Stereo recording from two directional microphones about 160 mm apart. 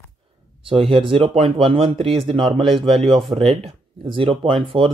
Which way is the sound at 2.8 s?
Centre (ahead or behind).